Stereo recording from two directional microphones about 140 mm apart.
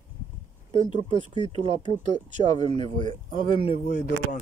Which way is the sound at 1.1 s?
35° left (ahead or behind).